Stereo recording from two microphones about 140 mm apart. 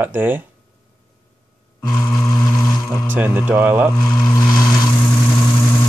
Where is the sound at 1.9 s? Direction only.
20° left (ahead or behind).